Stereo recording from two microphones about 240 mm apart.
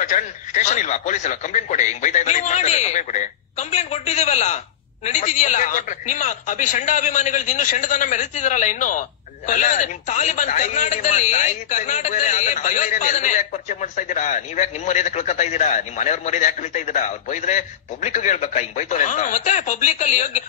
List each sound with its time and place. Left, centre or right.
0.0 s a woman's voice: left